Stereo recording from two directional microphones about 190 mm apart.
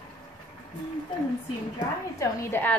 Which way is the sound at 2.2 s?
10° left (ahead or behind).